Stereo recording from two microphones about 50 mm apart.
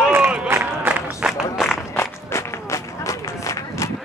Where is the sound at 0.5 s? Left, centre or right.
Right.